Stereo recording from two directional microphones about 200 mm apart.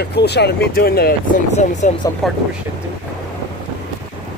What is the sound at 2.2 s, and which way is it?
Speech, centre (ahead or behind).